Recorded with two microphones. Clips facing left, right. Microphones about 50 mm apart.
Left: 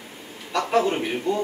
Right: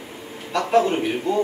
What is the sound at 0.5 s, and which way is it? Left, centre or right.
Speech, centre.